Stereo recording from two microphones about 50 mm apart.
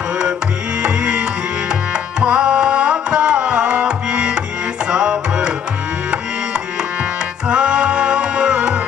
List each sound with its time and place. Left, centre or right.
0.8 s tabla: centre
4.9 s music: centre
7.4 s music: right